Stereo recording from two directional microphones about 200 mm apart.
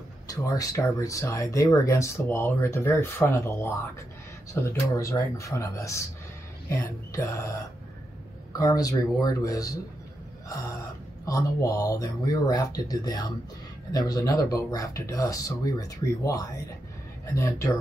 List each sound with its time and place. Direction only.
0.3 s speech: 15° left (ahead or behind)
8.5 s speech: 20° left (ahead or behind)
11.2 s speech: 15° left (ahead or behind)